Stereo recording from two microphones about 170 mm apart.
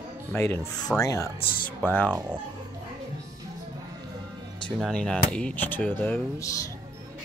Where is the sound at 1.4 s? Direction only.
60° left (ahead or behind).